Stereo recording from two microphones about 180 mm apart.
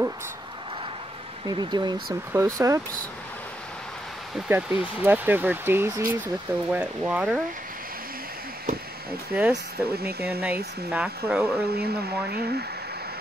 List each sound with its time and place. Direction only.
1.5 s speech: 25° right (ahead or behind)
4.5 s speech: 10° right (ahead or behind)
9.3 s speech: 5° right (ahead or behind)
11.7 s speech: 60° right (ahead or behind)